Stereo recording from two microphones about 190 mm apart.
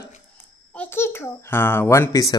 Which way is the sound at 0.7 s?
10° left (ahead or behind).